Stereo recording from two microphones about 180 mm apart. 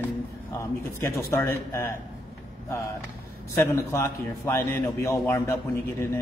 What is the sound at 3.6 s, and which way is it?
A man's voice, 15° left (ahead or behind).